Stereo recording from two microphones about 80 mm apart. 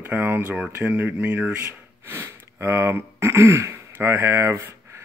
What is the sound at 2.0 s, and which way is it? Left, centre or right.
Speech, right.